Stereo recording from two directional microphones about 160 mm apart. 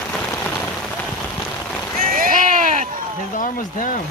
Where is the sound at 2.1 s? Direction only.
60° right (ahead or behind).